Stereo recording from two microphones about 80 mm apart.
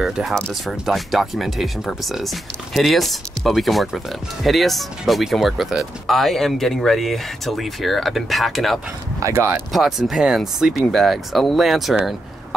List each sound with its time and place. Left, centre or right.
0.0 s speech: centre
9.2 s speech: right
9.7 s speech: centre